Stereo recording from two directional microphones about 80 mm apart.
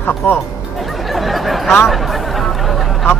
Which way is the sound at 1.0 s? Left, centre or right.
Centre.